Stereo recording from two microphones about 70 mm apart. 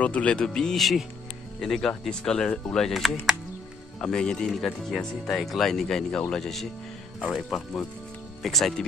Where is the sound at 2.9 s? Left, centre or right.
Centre.